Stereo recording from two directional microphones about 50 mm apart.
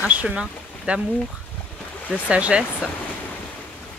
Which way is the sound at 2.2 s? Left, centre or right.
Right.